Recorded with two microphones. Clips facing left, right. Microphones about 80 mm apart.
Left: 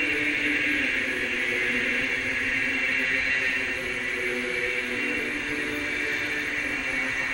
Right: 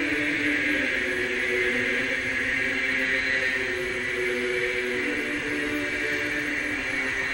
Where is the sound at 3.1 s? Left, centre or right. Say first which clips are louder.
Right 1 dB; right.